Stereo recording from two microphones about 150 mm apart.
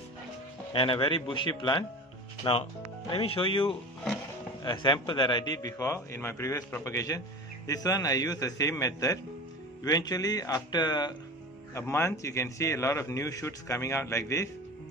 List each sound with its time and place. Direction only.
0.7 s a man's voice: 35° left (ahead or behind)
11.7 s a man's voice: 15° left (ahead or behind)